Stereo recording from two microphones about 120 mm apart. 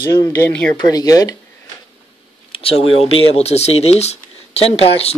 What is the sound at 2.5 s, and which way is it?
Speech, 50° left (ahead or behind).